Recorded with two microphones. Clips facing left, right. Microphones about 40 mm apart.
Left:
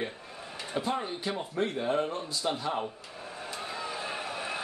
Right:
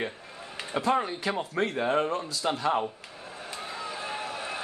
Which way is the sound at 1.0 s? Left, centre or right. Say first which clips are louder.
Right 3 dB; right.